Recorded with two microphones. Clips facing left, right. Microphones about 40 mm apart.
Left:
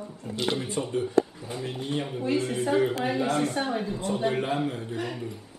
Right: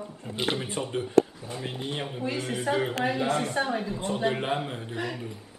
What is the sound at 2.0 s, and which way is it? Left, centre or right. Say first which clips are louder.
Speech: left 2 dB; centre.